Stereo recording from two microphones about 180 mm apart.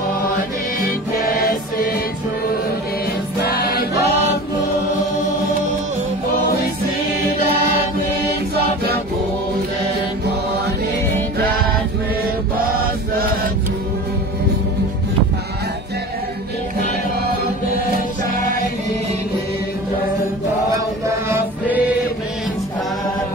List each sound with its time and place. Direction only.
0.8 s music: 55° left (ahead or behind)
3.4 s choir: 60° left (ahead or behind)
21.3 s choir: 10° right (ahead or behind)